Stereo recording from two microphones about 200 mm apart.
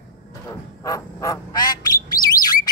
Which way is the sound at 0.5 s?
15° left (ahead or behind).